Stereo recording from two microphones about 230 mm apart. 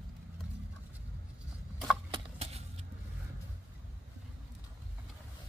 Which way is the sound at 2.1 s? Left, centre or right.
Right.